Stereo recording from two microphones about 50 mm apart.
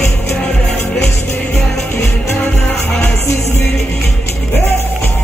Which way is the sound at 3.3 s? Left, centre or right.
Left.